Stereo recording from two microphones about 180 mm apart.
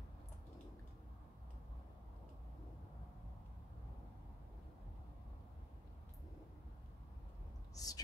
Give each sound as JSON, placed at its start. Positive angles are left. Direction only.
{"t": 7.7, "sound": "whispering", "side_deg": 20}